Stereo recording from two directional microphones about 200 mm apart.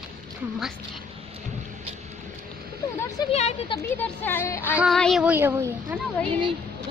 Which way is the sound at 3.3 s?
30° left (ahead or behind).